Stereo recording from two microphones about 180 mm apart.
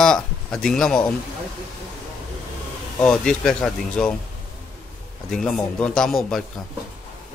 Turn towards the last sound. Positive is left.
turn(degrees=0)  # may be behind; listen again after turning